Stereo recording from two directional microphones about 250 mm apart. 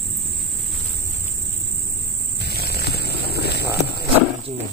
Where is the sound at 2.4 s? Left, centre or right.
Left.